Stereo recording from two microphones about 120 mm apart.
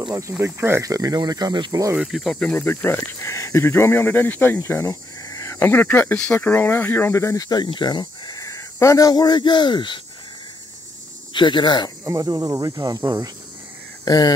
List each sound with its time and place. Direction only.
0.3 s speech: 20° right (ahead or behind)
2.0 s speech: centre (ahead or behind)
2.4 s speech: 15° left (ahead or behind); by 9.9 s 40° left (ahead or behind)
11.3 s speech: 40° left (ahead or behind)
12.0 s speech: 30° right (ahead or behind)
14.0 s speech: 35° left (ahead or behind)